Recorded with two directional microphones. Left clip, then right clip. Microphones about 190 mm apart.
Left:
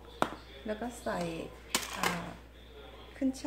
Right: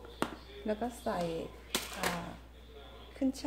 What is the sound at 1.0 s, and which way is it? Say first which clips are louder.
Speech: even; 20° right (ahead or behind).